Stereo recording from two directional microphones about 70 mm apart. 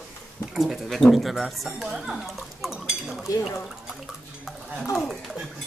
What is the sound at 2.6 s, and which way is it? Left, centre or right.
Dishes, centre.